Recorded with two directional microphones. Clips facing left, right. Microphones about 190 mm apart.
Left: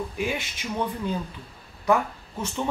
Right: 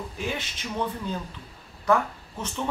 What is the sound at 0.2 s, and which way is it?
Speech, 10° left (ahead or behind).